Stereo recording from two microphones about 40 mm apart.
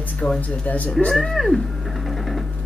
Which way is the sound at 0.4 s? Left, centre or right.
Left.